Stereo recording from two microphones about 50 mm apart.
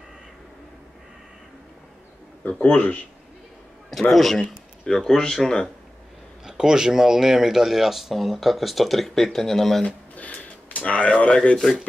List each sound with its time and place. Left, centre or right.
2.4 s a man's voice: left
4.1 s speech: centre
6.4 s speech: centre
9.8 s speech: left; by 11.7 s centre